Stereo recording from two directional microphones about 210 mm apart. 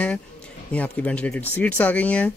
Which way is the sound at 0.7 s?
5° left (ahead or behind).